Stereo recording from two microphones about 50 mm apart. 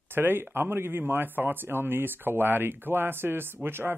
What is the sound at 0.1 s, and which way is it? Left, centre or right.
Speech, right.